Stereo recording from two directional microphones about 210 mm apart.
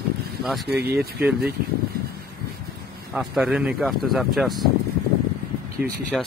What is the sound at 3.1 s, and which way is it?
Speech, centre (ahead or behind).